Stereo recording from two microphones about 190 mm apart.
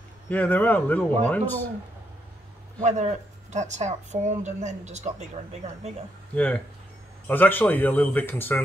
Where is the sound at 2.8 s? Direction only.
35° right (ahead or behind).